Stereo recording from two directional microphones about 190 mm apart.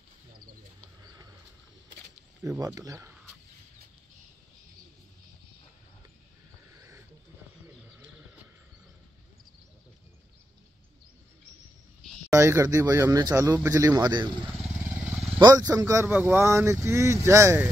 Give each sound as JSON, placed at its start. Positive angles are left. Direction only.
{"t": 2.4, "sound": "speech", "side_deg": -15}
{"t": 12.3, "sound": "speech", "side_deg": -15}
{"t": 14.8, "sound": "vehicle", "side_deg": -5}
{"t": 15.4, "sound": "speech", "side_deg": -20}